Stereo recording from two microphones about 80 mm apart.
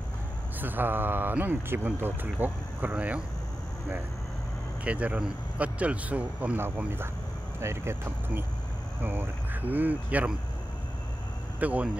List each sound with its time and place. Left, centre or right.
0.6 s speech: right
4.8 s speech: centre
11.6 s speech: centre